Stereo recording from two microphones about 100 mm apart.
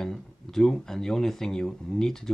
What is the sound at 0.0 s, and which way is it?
Speech, 5° left (ahead or behind).